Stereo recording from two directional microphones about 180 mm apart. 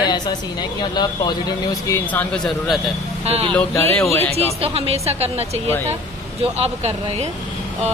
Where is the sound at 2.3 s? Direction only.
5° left (ahead or behind).